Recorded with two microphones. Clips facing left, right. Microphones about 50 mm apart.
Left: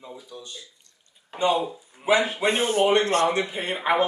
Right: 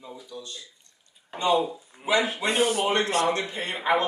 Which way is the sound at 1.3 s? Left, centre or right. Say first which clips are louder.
Even; centre.